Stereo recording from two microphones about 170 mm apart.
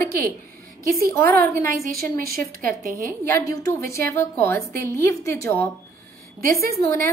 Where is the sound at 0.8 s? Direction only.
60° right (ahead or behind).